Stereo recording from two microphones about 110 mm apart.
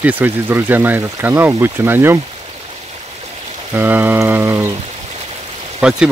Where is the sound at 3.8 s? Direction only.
15° right (ahead or behind).